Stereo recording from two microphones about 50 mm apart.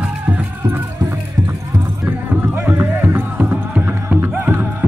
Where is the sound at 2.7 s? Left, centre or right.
Right.